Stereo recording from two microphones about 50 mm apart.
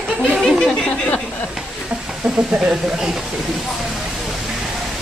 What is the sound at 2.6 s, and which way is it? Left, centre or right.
Speech, centre.